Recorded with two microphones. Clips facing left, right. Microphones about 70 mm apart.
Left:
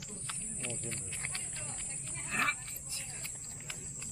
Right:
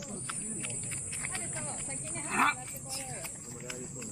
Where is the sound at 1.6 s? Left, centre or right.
Right.